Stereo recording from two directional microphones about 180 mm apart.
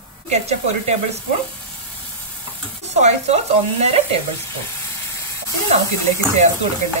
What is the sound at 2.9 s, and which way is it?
A woman's voice, 35° right (ahead or behind).